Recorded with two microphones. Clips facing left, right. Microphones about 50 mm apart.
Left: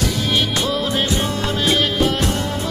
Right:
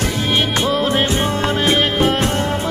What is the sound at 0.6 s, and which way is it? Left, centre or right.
Music, right.